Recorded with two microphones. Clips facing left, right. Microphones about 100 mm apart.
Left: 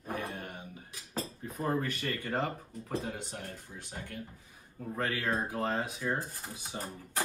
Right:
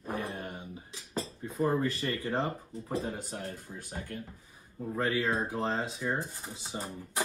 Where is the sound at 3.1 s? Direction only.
40° right (ahead or behind).